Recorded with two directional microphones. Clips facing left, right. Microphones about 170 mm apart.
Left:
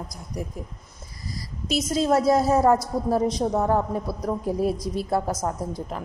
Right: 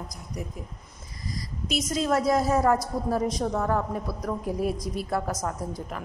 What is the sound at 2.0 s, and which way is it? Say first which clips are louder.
A woman's voice: left 4 dB; 30° left (ahead or behind).